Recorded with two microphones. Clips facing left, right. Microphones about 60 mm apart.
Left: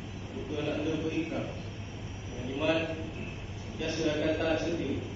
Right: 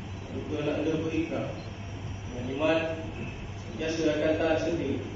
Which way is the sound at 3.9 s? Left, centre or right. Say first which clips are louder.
Right 4 dB; centre.